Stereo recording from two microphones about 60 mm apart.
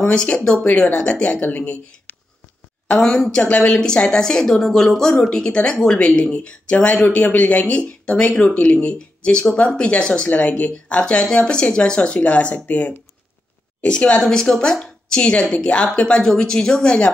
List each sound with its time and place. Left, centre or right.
0.0 s speech: centre
3.0 s speech: centre